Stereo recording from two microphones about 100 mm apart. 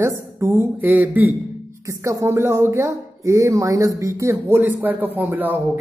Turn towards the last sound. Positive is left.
turn(degrees=-20)  # may be behind; listen again after turning